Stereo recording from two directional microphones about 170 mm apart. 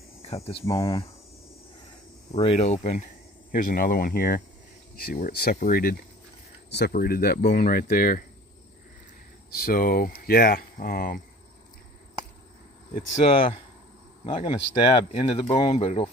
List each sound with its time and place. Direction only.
0.3 s speech: 35° left (ahead or behind)
2.3 s speech: 35° left (ahead or behind)
3.5 s speech: 55° left (ahead or behind)
6.7 s speech: 70° left (ahead or behind)
9.5 s speech: 60° left (ahead or behind)
13.3 s speech: 30° left (ahead or behind)